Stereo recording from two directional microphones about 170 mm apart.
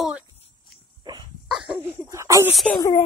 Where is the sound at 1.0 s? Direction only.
25° right (ahead or behind).